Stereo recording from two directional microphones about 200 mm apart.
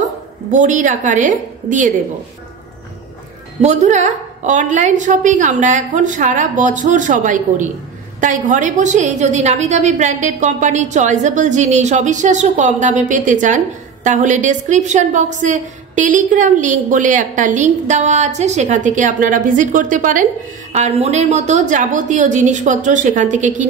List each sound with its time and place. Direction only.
0.5 s a woman's voice: 40° right (ahead or behind)
3.6 s a woman's voice: 35° right (ahead or behind)